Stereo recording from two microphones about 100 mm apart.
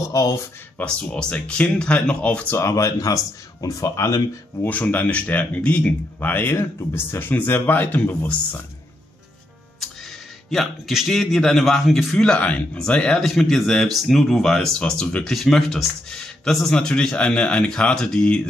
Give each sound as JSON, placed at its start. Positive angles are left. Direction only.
{"t": 0.1, "sound": "speech", "side_deg": 35}
{"t": 0.7, "sound": "speech", "side_deg": 10}
{"t": 2.5, "sound": "speech", "side_deg": 30}
{"t": 4.6, "sound": "speech", "side_deg": 15}
{"t": 10.5, "sound": "a man's voice", "side_deg": 0}